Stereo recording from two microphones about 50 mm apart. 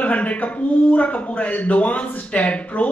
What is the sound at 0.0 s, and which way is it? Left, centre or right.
A man's voice, left.